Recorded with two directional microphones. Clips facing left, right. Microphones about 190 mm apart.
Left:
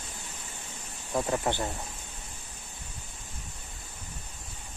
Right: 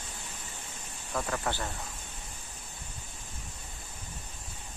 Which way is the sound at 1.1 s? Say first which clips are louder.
Left 5 dB; 25° left (ahead or behind).